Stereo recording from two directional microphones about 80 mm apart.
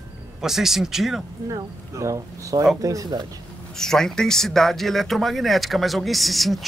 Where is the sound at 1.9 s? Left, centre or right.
Right.